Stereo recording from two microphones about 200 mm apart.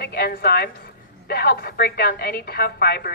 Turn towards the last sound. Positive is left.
turn(degrees=50)  # may be behind; listen again after turning